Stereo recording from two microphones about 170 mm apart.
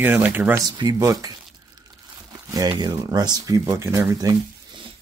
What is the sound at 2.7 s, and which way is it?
Speech, 25° right (ahead or behind).